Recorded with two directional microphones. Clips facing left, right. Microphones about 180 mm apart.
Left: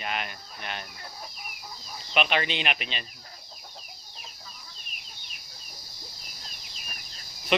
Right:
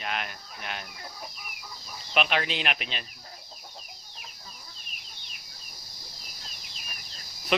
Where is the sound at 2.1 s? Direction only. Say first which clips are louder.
Left 1 dB; centre (ahead or behind).